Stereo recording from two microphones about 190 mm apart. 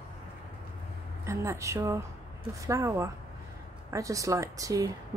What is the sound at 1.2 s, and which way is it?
Speech, 15° right (ahead or behind).